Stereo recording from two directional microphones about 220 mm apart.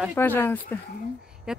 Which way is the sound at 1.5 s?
5° right (ahead or behind).